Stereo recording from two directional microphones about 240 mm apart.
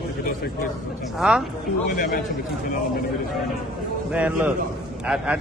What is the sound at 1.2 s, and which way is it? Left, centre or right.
Speech, centre.